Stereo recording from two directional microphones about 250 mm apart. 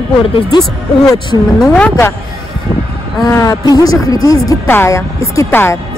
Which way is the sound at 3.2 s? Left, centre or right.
Centre.